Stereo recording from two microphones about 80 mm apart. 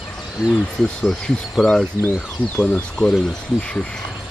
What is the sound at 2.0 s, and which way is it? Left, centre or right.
Speech, left.